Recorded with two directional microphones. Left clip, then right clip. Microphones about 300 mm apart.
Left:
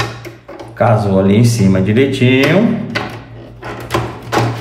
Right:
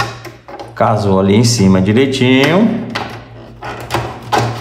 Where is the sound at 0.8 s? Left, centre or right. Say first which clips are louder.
Even; centre.